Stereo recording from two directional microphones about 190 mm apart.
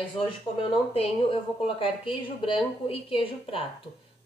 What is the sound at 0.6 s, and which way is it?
A woman's voice, 30° left (ahead or behind).